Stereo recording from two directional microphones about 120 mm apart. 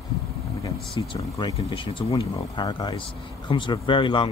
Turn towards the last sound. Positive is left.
turn(degrees=45)  # may be behind; listen again after turning